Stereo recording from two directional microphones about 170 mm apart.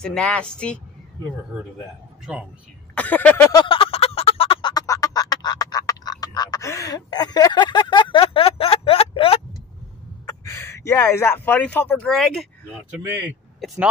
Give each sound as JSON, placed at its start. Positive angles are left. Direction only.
{"t": 0.0, "sound": "a woman's voice", "side_deg": 5}
{"t": 2.9, "sound": "speech", "side_deg": 10}
{"t": 3.5, "sound": "a sound", "side_deg": 30}
{"t": 10.4, "sound": "speech", "side_deg": 15}